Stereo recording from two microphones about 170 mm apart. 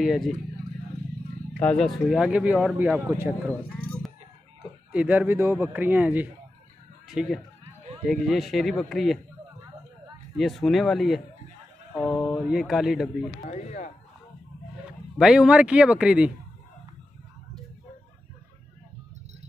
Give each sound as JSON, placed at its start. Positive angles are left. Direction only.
{"t": 0.0, "sound": "a man's voice", "side_deg": 0}
{"t": 1.6, "sound": "a man's voice", "side_deg": 5}
{"t": 3.4, "sound": "a sound", "side_deg": 10}
{"t": 4.9, "sound": "a man's voice", "side_deg": -10}
{"t": 10.3, "sound": "a man's voice", "side_deg": 0}
{"t": 13.5, "sound": "speech", "side_deg": 45}
{"t": 14.9, "sound": "speech", "side_deg": -5}